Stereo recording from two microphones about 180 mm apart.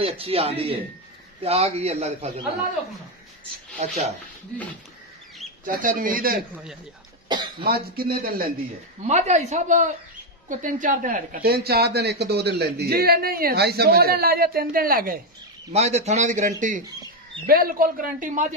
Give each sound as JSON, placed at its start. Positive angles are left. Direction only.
{"t": 0.0, "sound": "a man's voice", "side_deg": -30}
{"t": 3.8, "sound": "a man's voice", "side_deg": -35}
{"t": 5.7, "sound": "a man's voice", "side_deg": -50}
{"t": 6.5, "sound": "a man's voice", "side_deg": -5}
{"t": 7.6, "sound": "a woman's voice", "side_deg": -55}
{"t": 9.0, "sound": "a man's voice", "side_deg": -40}
{"t": 15.7, "sound": "a man's voice", "side_deg": -35}